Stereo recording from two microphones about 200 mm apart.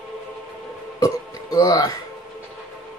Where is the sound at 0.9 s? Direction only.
15° left (ahead or behind).